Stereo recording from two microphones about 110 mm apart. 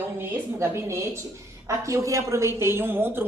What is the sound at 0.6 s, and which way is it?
Music, 25° right (ahead or behind).